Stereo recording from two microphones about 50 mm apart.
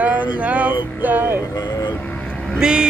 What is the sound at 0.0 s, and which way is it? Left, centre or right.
Music, right.